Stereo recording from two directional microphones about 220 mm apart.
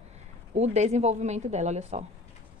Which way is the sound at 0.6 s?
30° right (ahead or behind).